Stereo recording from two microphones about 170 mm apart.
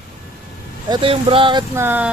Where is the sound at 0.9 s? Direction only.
30° right (ahead or behind).